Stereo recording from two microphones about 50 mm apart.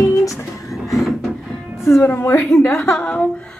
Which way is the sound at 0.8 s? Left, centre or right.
Centre.